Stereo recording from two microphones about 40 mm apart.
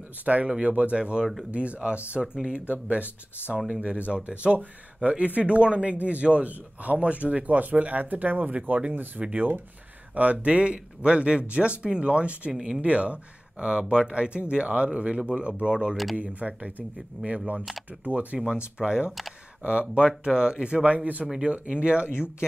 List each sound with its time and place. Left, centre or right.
0.2 s speech: right
2.1 s speech: right
2.7 s speech: right
12.5 s speech: centre
12.8 s speech: right
16.2 s speech: right
18.4 s speech: right